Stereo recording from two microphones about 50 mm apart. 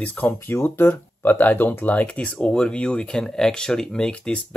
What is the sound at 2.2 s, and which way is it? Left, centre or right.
Speech, centre.